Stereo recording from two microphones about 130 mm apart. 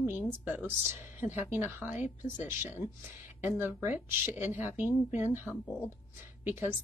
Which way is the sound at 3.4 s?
15° right (ahead or behind).